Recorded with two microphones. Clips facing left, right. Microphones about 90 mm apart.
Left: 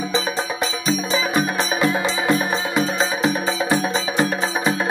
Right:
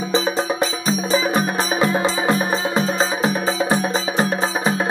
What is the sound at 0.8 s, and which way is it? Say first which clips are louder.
Music: right 1 dB; 35° right (ahead or behind).